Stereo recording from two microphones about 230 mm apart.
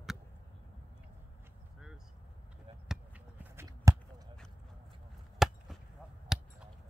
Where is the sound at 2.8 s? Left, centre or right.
Centre.